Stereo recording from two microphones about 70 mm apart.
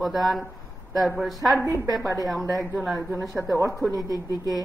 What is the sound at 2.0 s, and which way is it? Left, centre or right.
Speech, right.